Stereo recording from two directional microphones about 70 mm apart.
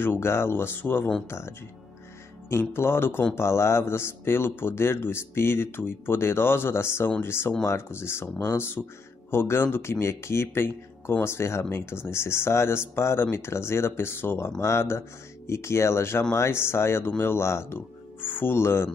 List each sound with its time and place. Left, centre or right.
0.0 s speech: left
2.7 s speech: left